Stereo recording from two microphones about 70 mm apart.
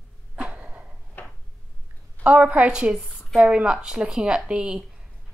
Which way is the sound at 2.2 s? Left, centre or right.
Centre.